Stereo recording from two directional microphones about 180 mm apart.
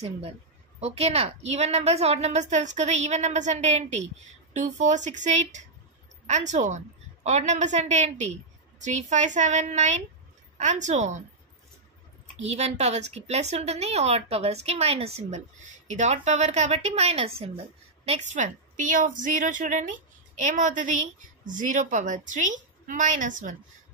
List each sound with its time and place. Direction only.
0.7 s a woman's voice: 35° right (ahead or behind)
12.4 s a woman's voice: 40° right (ahead or behind)